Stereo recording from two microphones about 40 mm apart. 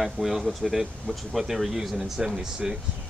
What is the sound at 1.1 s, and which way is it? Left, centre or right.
Speech, left.